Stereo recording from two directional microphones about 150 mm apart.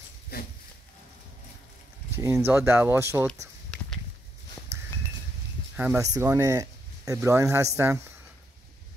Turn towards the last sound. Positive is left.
turn(degrees=-20)  # may be behind; listen again after turning